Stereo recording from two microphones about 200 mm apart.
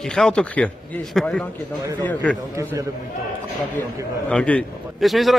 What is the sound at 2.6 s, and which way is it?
Speech, 15° right (ahead or behind).